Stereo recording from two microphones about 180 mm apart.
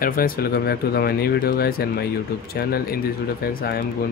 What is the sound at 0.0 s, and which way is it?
Speech, 50° left (ahead or behind).